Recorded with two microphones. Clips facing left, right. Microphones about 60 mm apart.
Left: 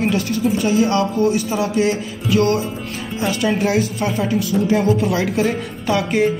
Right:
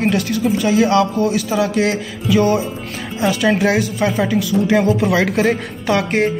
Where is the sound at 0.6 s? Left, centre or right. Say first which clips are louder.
Right 4 dB; right.